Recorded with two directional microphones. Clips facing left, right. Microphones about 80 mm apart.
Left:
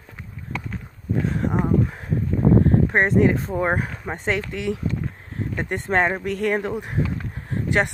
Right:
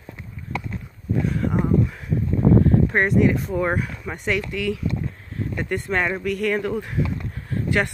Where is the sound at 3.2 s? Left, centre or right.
Left.